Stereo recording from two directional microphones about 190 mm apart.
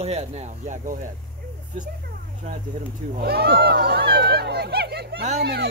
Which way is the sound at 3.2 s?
55° right (ahead or behind).